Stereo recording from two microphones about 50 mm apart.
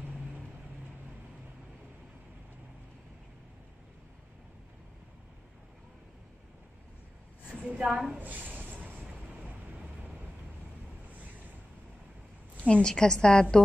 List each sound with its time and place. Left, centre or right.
7.4 s a woman's voice: right
8.2 s a sound: right
12.6 s a woman's voice: centre